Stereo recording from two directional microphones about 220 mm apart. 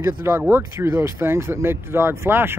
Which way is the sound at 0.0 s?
10° right (ahead or behind).